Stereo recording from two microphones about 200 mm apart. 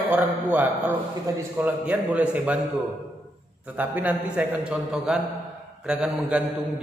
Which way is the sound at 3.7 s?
10° right (ahead or behind).